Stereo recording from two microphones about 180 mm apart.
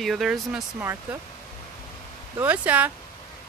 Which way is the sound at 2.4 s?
10° right (ahead or behind).